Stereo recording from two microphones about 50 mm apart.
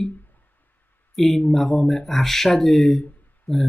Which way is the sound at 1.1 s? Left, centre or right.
Centre.